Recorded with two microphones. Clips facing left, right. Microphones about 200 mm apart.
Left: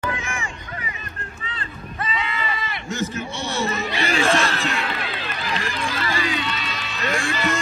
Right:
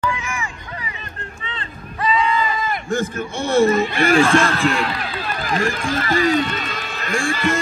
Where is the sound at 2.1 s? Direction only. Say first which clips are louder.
Right 9 dB; 35° right (ahead or behind).